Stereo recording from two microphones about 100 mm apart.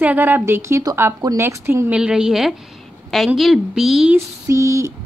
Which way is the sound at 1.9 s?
10° right (ahead or behind).